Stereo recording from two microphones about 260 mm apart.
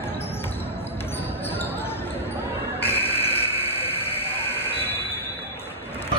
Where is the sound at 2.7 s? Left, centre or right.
Centre.